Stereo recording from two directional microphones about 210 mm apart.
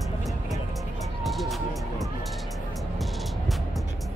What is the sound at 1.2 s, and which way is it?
Speech, centre (ahead or behind).